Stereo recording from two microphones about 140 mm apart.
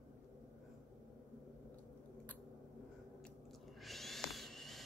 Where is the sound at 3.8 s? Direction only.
Centre (ahead or behind).